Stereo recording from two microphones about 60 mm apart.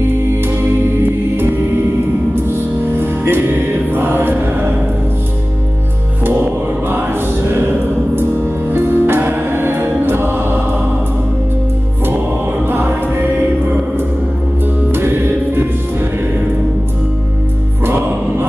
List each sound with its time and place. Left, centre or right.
2.3 s music: right
6.2 s choir: right
8.7 s music: right
12.6 s music: right
14.9 s music: right
17.8 s music: right